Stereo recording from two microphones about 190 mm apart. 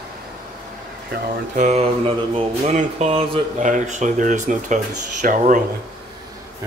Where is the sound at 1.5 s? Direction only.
35° right (ahead or behind).